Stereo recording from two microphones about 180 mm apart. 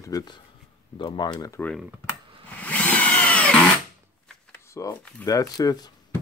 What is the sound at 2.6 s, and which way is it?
Tools, 10° left (ahead or behind).